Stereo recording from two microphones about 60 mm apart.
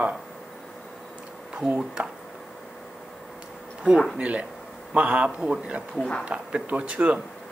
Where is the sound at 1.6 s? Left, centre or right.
Centre.